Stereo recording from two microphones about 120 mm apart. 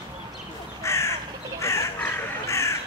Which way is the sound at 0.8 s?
25° left (ahead or behind).